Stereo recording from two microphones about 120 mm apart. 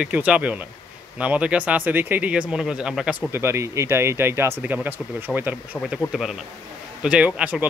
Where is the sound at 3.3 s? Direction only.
20° right (ahead or behind).